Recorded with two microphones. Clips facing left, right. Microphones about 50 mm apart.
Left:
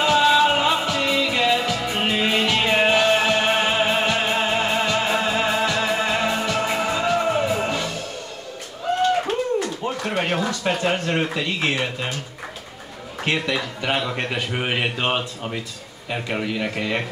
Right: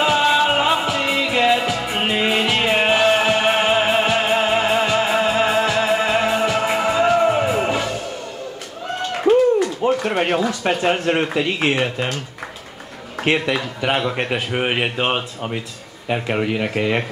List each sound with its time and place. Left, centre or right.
0.0 s music: centre
9.2 s a sound: centre
10.5 s speech: right
13.2 s speech: right